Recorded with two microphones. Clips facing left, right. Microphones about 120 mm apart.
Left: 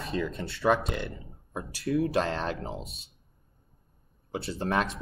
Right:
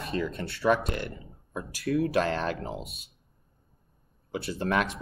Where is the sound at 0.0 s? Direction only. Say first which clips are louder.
Right 1 dB; centre (ahead or behind).